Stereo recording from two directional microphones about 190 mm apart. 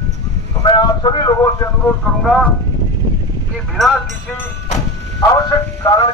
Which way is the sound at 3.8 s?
Centre (ahead or behind).